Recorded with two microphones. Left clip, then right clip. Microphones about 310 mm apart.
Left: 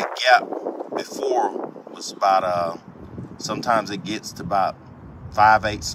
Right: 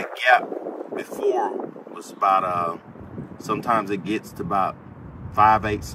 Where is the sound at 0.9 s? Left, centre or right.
Centre.